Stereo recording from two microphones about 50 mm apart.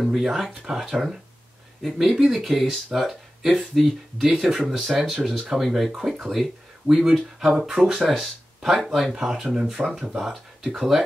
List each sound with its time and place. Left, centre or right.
0.2 s speech: centre
10.7 s speech: centre